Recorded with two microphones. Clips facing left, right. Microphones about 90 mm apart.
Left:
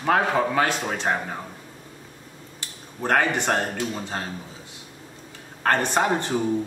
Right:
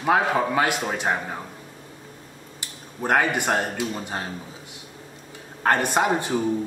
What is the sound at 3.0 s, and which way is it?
Speech, 10° right (ahead or behind).